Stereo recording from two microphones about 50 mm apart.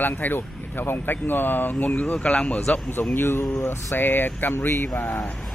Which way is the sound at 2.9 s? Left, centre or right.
Left.